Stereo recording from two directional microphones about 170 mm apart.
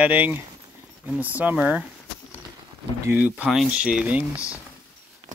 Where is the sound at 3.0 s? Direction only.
10° right (ahead or behind).